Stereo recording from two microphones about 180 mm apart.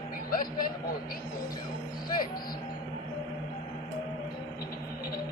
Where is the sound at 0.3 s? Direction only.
50° left (ahead or behind).